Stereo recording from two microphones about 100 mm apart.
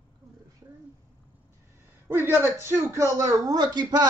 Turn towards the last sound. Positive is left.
turn(degrees=-45)  # may be behind; listen again after turning